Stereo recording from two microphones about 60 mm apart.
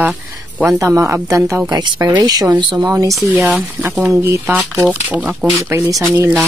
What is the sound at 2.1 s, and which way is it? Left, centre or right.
Speech, right.